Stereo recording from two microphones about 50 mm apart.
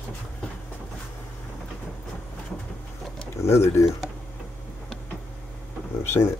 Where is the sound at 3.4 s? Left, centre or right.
Left.